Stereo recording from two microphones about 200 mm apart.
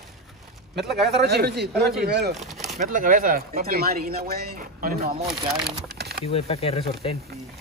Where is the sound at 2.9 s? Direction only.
40° right (ahead or behind).